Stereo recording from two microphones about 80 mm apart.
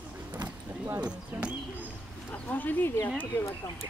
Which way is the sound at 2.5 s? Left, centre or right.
Left.